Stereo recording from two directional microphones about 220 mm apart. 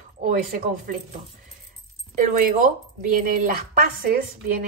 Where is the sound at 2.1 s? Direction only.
35° right (ahead or behind).